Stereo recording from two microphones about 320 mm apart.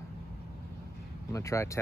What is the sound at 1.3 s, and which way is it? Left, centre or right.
Speech, centre.